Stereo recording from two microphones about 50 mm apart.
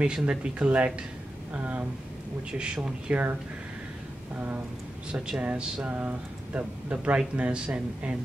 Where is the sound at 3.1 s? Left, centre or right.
Right.